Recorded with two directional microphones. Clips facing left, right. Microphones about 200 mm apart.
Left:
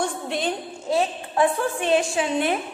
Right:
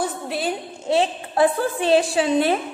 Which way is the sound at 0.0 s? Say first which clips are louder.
Right 1 dB; 5° right (ahead or behind).